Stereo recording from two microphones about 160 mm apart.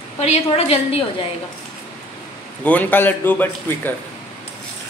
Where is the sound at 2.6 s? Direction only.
10° left (ahead or behind).